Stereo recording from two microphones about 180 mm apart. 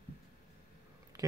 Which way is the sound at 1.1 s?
20° right (ahead or behind).